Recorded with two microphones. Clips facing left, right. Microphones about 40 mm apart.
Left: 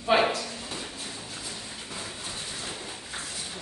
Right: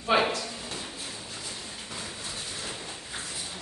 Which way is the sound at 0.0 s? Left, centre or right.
Centre.